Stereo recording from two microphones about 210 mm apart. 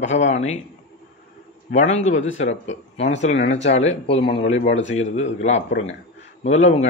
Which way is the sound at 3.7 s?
30° left (ahead or behind).